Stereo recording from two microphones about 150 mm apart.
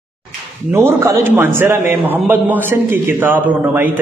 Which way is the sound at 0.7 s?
15° right (ahead or behind).